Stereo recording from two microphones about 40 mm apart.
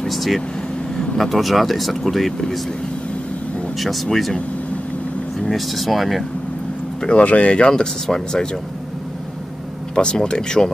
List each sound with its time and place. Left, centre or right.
0.1 s speech: centre
3.7 s speech: centre
5.4 s speech: centre
7.2 s speech: left; by 8.5 s centre
9.9 s speech: left